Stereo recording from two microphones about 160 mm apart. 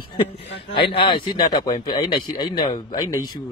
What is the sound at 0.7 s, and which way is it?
Speech, 35° left (ahead or behind).